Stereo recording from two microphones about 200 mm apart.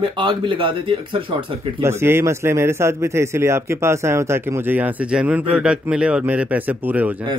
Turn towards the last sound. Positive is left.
turn(degrees=-10)  # may be behind; listen again after turning